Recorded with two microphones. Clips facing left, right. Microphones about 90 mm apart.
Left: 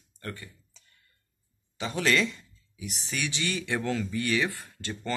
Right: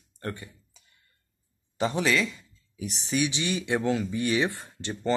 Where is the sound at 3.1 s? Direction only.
15° right (ahead or behind).